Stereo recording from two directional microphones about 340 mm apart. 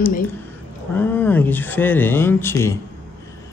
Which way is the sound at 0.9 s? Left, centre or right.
Centre.